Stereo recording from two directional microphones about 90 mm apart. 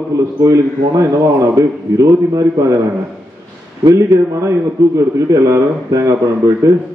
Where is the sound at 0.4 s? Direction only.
40° right (ahead or behind).